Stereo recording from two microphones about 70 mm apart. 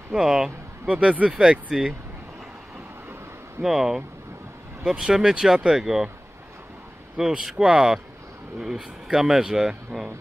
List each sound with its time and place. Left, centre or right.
0.1 s speech: centre
0.8 s speech: right
1.3 s speech: centre
3.6 s speech: centre
7.2 s speech: centre